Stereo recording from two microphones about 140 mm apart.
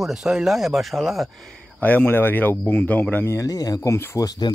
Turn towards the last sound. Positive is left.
turn(degrees=30)  # may be behind; listen again after turning